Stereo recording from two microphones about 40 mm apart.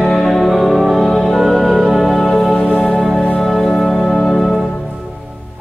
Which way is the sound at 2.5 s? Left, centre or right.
Centre.